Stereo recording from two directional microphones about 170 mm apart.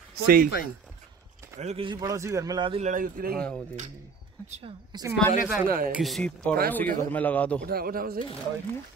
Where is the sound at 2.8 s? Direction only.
50° right (ahead or behind).